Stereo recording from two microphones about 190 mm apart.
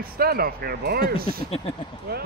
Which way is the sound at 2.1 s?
55° right (ahead or behind).